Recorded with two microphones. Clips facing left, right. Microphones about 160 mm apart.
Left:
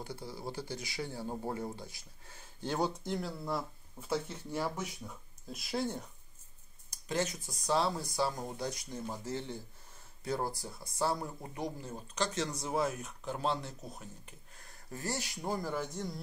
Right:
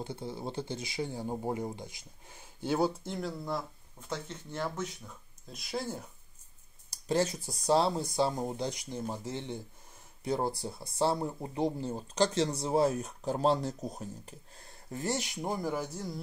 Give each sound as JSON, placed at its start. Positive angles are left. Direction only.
{"t": 0.0, "sound": "speech", "side_deg": -25}
{"t": 6.9, "sound": "speech", "side_deg": -35}